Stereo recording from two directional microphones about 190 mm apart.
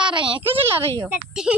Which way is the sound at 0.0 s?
25° right (ahead or behind).